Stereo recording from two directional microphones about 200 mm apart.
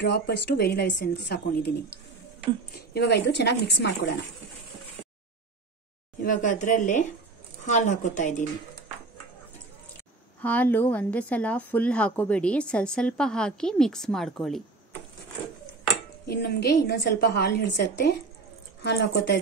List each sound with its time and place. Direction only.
0.0 s a woman's voice: 55° left (ahead or behind)
2.9 s a woman's voice: 60° left (ahead or behind)
6.2 s a woman's voice: 40° left (ahead or behind)
10.4 s a woman's voice: 10° left (ahead or behind)
16.3 s a woman's voice: 55° left (ahead or behind)